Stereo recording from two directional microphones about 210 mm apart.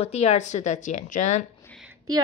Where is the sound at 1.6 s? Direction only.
Centre (ahead or behind).